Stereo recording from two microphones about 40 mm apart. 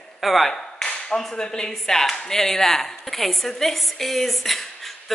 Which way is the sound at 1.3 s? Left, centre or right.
Centre.